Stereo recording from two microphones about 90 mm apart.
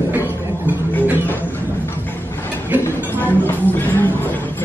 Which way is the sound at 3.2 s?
20° left (ahead or behind).